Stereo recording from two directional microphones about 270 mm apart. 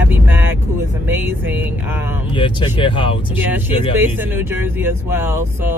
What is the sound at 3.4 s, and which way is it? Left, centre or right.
Speech, centre.